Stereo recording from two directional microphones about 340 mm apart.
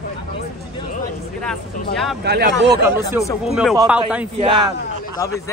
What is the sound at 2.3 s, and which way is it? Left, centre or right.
Speech, right.